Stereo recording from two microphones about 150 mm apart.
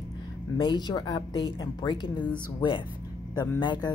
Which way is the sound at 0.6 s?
30° left (ahead or behind).